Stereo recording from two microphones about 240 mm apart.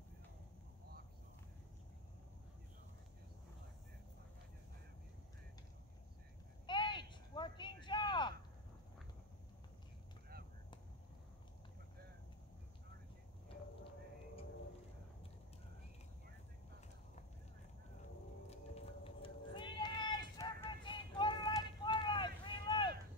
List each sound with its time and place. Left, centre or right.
6.6 s a sound: centre
18.5 s run: left
21.6 s vehicle: centre